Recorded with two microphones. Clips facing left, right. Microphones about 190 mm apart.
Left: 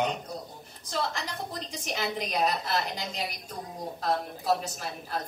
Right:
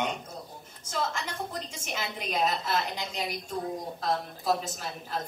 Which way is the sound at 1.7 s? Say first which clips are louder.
Left 4 dB; 35° left (ahead or behind).